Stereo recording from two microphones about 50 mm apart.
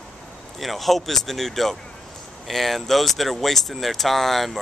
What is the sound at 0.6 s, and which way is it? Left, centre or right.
Speech, centre.